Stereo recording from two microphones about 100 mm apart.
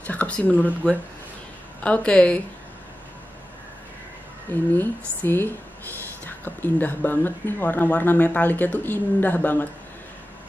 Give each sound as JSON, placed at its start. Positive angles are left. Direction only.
{"t": 0.0, "sound": "speech", "side_deg": 15}
{"t": 0.5, "sound": "speech", "side_deg": -15}
{"t": 1.8, "sound": "a woman's voice", "side_deg": 10}
{"t": 4.7, "sound": "speech", "side_deg": 20}